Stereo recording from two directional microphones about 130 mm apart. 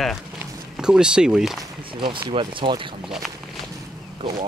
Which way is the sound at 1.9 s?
40° right (ahead or behind).